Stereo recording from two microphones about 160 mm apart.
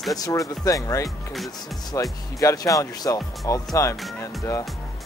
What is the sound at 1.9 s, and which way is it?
Speech, 20° left (ahead or behind).